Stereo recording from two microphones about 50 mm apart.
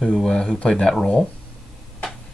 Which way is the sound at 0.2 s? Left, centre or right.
Centre.